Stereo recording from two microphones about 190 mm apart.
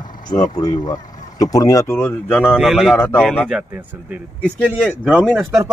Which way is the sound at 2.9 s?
10° left (ahead or behind).